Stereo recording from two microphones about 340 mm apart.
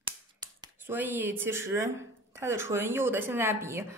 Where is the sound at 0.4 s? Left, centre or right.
Centre.